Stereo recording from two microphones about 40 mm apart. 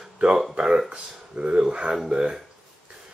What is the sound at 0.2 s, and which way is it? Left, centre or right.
Speech, right.